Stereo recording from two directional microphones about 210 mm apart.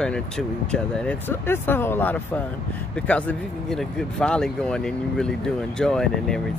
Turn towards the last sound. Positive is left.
turn(degrees=5)  # may be behind; listen again after turning